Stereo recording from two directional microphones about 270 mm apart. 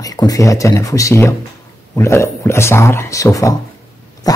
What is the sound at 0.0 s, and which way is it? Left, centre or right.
Speech, centre.